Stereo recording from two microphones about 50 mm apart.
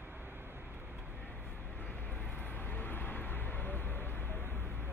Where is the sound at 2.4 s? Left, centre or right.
Left.